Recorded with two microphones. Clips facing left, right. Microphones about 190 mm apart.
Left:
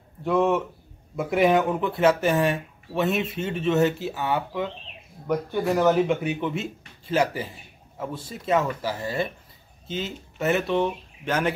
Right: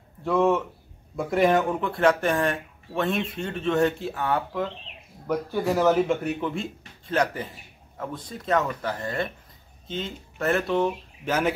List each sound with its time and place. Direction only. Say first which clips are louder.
0.2 s speech: even; centre (ahead or behind)